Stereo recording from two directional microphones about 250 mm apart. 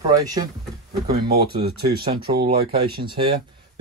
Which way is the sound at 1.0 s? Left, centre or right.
Right.